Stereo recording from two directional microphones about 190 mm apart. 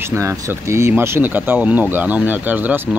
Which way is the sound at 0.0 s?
15° right (ahead or behind).